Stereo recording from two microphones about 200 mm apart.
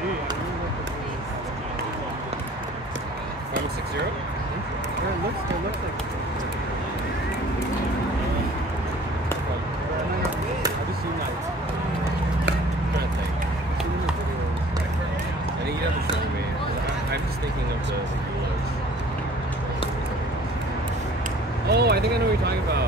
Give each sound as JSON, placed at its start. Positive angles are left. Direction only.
{"t": 21.6, "sound": "vehicle", "side_deg": -55}